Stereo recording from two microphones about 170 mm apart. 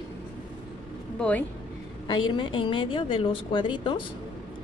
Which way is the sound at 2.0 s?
30° left (ahead or behind).